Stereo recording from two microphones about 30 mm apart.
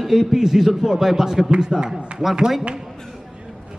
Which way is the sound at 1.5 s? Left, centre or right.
Right.